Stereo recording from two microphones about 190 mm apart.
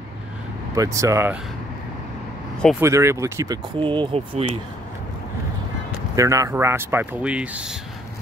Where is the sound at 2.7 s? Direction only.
15° right (ahead or behind).